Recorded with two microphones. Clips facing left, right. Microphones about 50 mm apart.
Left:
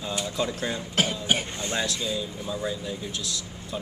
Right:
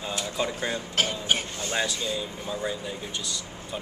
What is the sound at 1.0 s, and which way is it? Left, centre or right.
Cough, centre.